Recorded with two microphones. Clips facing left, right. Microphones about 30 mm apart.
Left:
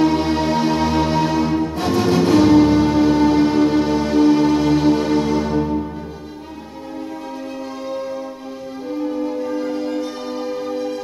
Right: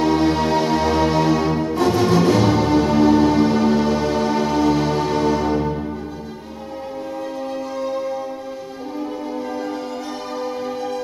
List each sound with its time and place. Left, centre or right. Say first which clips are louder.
0.0 s music: even; centre
9.6 s music: left 4 dB; centre